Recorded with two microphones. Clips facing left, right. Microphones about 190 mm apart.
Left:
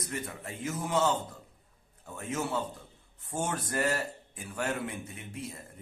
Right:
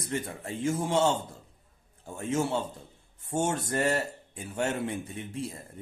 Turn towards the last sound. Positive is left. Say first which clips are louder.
# right 5 dB
turn(degrees=-30)  # may be behind; listen again after turning